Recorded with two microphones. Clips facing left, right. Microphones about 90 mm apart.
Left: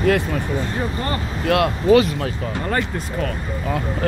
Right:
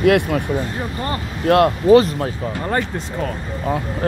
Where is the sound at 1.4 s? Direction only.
40° right (ahead or behind).